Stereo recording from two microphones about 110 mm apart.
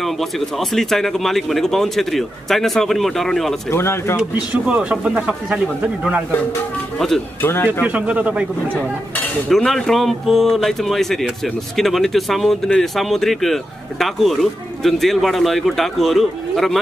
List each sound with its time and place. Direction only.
0.0 s speech: centre (ahead or behind)
3.7 s speech: 20° left (ahead or behind)
4.2 s speech: 10° right (ahead or behind)
7.4 s speech: 20° left (ahead or behind)
7.8 s speech: 10° right (ahead or behind)
9.5 s speech: 5° left (ahead or behind)